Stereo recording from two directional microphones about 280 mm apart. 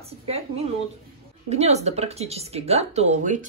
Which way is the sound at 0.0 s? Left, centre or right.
Right.